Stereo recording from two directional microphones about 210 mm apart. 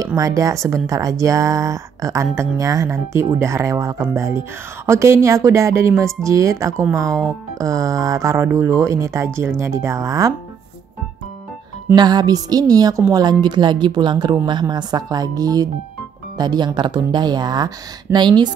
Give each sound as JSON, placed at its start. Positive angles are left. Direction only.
{"t": 0.0, "sound": "speech", "side_deg": -15}
{"t": 11.9, "sound": "a woman's voice", "side_deg": -20}